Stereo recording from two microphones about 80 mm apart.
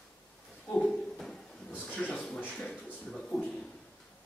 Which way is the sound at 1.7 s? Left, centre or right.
Centre.